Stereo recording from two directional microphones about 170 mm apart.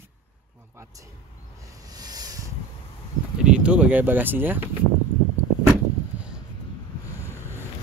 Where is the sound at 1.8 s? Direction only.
20° right (ahead or behind).